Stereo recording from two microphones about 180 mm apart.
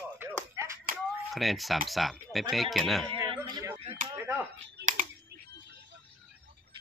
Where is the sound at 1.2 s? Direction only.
Centre (ahead or behind).